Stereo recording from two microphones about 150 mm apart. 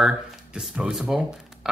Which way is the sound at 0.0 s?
5° right (ahead or behind).